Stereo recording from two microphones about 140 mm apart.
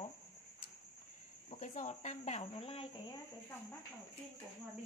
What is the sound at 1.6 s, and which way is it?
Speech, 60° left (ahead or behind).